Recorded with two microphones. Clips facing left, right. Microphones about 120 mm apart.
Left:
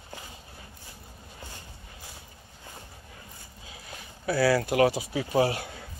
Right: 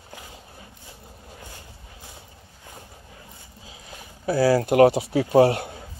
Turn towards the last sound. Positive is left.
turn(degrees=-60)  # may be behind; listen again after turning